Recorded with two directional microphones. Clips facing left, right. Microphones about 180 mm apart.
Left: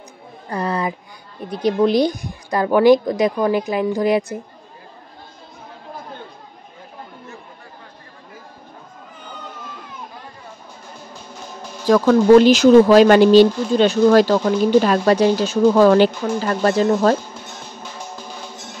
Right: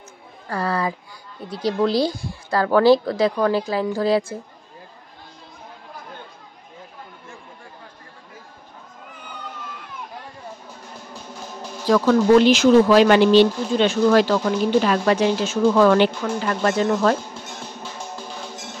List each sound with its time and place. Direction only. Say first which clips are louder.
0.5 s a woman's voice: left 1 dB; 20° left (ahead or behind)
11.9 s speech: left 4 dB; 40° left (ahead or behind)